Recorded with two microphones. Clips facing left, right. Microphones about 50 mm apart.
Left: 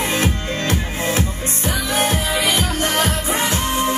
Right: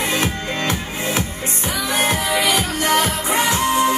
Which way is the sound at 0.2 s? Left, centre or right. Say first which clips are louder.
Even; right.